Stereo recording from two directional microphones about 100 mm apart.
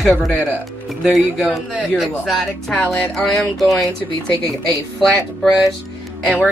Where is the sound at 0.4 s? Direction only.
20° right (ahead or behind).